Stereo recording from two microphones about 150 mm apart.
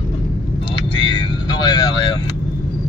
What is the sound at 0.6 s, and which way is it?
Vehicle, 35° left (ahead or behind).